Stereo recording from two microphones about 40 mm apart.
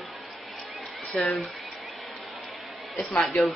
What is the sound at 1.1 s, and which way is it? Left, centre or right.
Speech, centre.